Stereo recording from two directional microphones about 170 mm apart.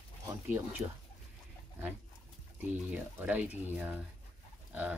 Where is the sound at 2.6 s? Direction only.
10° right (ahead or behind).